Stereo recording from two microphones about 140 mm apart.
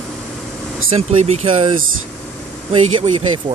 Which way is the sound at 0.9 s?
50° right (ahead or behind).